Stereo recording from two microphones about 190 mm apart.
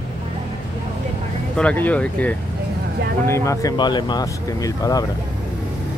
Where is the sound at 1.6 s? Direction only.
5° left (ahead or behind).